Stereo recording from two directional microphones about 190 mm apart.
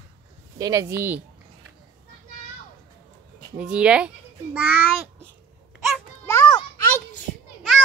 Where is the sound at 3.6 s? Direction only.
5° right (ahead or behind).